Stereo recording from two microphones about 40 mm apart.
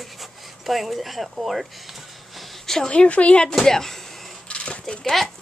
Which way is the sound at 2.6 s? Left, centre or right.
Centre.